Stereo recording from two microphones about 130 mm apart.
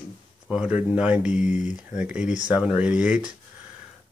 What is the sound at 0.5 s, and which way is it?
Speech, 10° right (ahead or behind).